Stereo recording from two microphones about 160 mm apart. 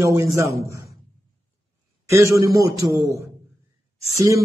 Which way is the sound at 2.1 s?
20° right (ahead or behind).